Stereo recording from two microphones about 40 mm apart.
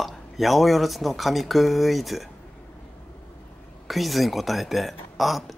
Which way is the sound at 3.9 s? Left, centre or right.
Centre.